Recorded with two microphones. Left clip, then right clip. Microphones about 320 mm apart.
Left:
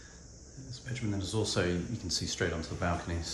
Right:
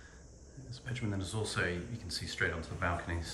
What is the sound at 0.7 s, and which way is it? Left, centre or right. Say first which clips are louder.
Speech: left 2 dB; centre.